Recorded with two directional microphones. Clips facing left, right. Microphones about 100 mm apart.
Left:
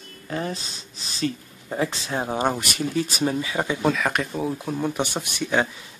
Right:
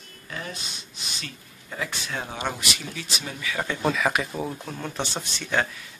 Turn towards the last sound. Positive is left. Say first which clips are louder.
# left 3 dB
turn(degrees=15)  # may be behind; listen again after turning